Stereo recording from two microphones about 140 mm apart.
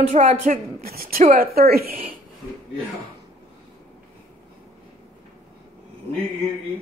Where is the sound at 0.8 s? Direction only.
90° right.